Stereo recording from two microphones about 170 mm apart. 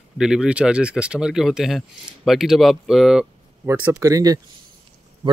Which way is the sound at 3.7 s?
15° right (ahead or behind).